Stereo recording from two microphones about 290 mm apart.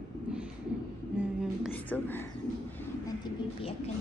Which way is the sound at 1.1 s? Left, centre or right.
Centre.